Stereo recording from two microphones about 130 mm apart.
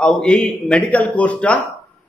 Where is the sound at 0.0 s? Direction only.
5° left (ahead or behind).